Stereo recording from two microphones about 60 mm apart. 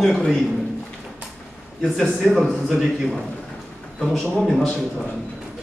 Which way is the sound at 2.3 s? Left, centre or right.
Centre.